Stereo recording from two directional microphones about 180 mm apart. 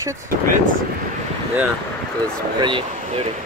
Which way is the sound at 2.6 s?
25° right (ahead or behind).